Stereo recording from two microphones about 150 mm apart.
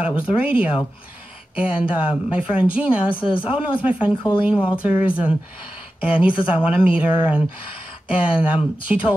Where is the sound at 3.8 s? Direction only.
10° right (ahead or behind).